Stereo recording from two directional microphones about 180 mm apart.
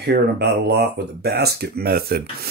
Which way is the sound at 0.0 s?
60° right (ahead or behind).